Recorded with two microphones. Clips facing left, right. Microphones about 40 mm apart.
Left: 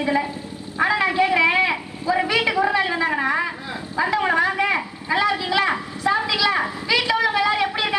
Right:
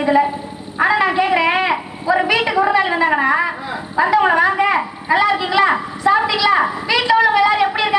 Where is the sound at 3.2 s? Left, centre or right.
Centre.